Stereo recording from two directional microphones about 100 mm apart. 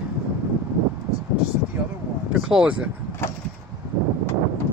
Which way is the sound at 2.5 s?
5° right (ahead or behind).